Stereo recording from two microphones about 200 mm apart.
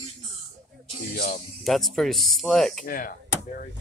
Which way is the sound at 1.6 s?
Centre (ahead or behind).